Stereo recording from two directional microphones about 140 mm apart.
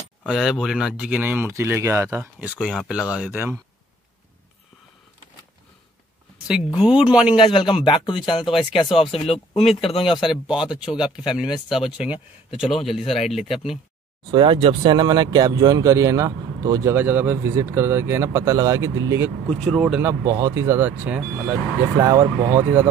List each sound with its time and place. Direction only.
0.2 s speech: centre (ahead or behind)
6.4 s speech: 5° right (ahead or behind)
7.3 s speech: 35° left (ahead or behind)
10.4 s speech: 5° right (ahead or behind)
14.3 s speech: 35° right (ahead or behind)
16.9 s speech: 15° right (ahead or behind)
19.5 s speech: 5° left (ahead or behind)
20.0 s speech: 20° right (ahead or behind)
21.9 s speech: 25° right (ahead or behind)